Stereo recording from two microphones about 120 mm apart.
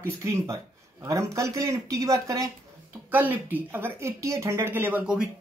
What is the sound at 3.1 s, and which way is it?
A woman's voice, 15° right (ahead or behind).